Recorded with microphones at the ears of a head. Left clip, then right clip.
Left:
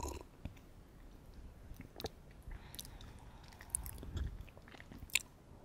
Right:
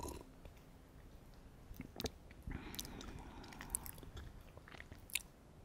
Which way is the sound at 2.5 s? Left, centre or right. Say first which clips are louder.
Right 4 dB; right.